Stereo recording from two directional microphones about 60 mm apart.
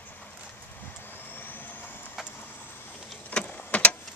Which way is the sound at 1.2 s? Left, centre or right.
Left.